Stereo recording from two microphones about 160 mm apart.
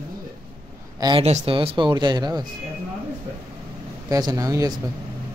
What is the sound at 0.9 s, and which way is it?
Speech, 25° right (ahead or behind).